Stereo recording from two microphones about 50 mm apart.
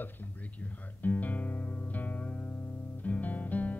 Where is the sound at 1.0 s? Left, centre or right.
Left.